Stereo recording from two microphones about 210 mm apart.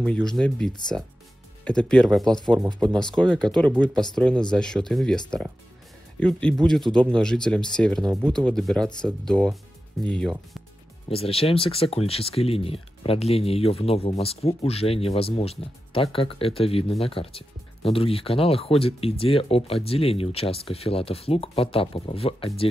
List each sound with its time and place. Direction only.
0.0 s speech: 5° left (ahead or behind)
11.1 s speech: 25° left (ahead or behind)